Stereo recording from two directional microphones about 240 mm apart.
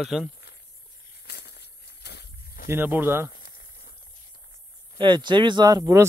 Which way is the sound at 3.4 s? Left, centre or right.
Left.